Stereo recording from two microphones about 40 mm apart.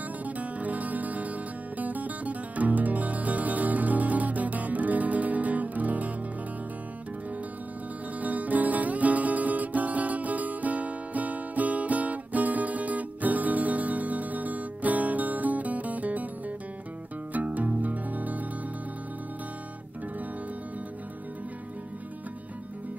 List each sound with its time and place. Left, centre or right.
0.2 s music: right
8.2 s music: right